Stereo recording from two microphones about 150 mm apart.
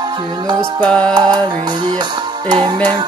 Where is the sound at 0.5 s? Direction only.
5° left (ahead or behind).